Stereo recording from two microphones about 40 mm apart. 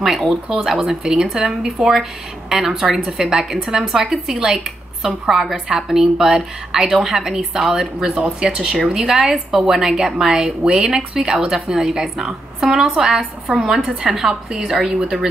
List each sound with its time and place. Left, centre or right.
0.0 s speech: centre